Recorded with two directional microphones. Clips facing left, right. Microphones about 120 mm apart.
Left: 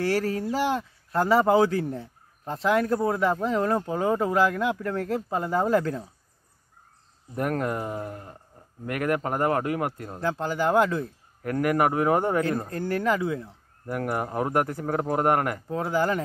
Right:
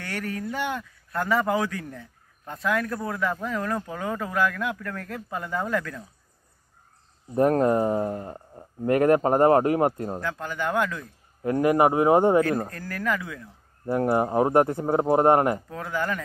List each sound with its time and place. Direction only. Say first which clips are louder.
0.0 s speech: left 7 dB; 30° left (ahead or behind)
7.3 s speech: right 7 dB; 30° right (ahead or behind)
10.2 s speech: left 7 dB; 30° left (ahead or behind)
11.4 s speech: right 3 dB; 20° right (ahead or behind)
12.6 s speech: left 4 dB; 30° left (ahead or behind)
13.8 s speech: right 6 dB; 25° right (ahead or behind)
15.7 s speech: left 4 dB; 30° left (ahead or behind)